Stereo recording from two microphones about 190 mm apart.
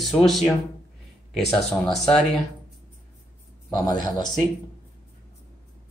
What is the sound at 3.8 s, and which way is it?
Speech, 20° left (ahead or behind).